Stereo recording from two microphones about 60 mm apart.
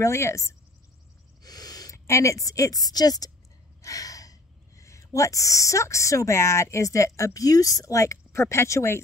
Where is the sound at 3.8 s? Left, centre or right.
Left.